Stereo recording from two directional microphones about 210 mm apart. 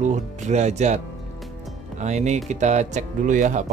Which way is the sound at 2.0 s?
35° right (ahead or behind).